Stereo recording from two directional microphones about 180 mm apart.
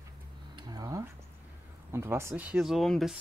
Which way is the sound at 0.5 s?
20° right (ahead or behind).